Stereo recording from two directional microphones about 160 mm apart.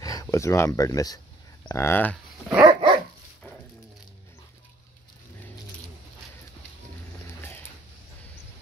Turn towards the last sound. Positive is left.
turn(degrees=15)  # may be behind; listen again after turning